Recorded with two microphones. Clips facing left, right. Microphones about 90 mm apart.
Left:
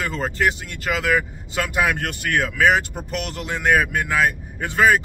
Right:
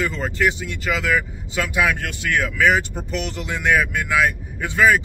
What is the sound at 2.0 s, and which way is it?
Speech, 55° left (ahead or behind).